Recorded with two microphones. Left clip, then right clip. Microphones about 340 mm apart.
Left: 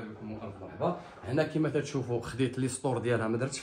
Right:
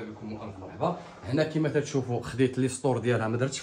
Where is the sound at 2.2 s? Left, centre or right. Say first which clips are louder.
Right 5 dB; right.